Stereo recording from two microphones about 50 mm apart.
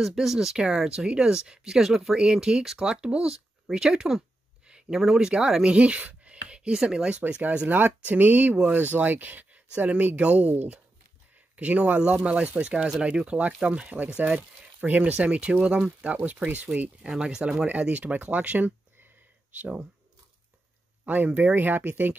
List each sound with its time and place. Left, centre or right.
0.0 s speech: centre; by 16.6 s right
17.2 s speech: centre; by 18.7 s right
21.0 s a sound: right
21.3 s speech: right
21.5 s speech: right